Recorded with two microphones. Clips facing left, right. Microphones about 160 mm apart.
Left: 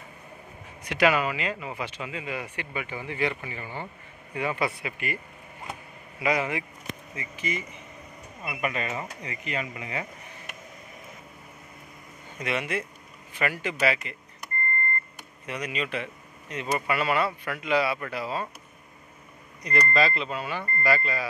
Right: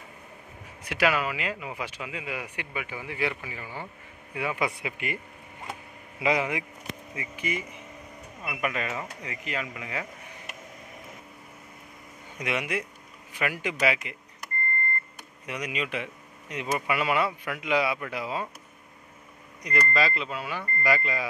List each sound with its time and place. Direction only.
0.8 s speech: 5° right (ahead or behind)
8.5 s speech: centre (ahead or behind)
12.4 s speech: 15° right (ahead or behind)
15.4 s speech: 15° right (ahead or behind)
19.6 s speech: 10° right (ahead or behind)